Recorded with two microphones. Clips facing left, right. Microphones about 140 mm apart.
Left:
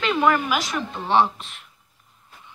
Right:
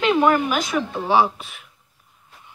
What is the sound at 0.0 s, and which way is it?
A woman's voice, 5° right (ahead or behind).